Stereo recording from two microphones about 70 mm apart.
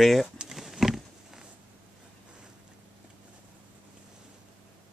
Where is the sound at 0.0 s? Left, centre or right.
Centre.